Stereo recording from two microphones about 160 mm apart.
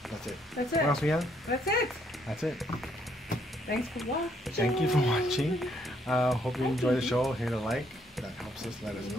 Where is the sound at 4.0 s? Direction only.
Centre (ahead or behind).